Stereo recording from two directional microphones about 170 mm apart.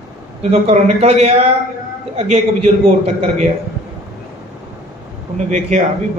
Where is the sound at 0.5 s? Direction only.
40° right (ahead or behind).